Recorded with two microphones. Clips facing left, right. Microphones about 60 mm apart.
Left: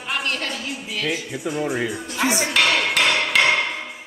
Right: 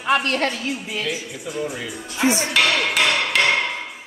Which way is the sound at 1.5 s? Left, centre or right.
Left.